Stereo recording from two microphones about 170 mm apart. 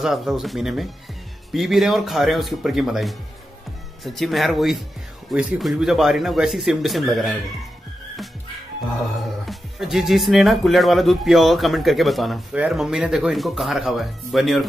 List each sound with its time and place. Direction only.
0.0 s speech: centre (ahead or behind)
9.5 s speech: centre (ahead or behind)